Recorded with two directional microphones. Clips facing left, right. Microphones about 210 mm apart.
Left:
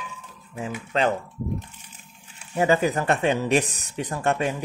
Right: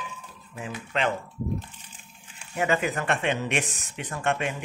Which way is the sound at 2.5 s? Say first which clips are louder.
Left 5 dB; 35° left (ahead or behind).